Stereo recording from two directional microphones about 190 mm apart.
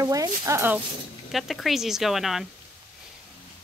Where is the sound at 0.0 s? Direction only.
20° right (ahead or behind).